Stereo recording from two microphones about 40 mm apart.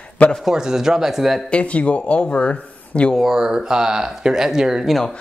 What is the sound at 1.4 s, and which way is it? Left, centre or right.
Speech, left.